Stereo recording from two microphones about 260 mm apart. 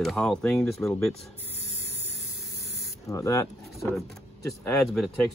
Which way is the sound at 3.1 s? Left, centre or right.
Centre.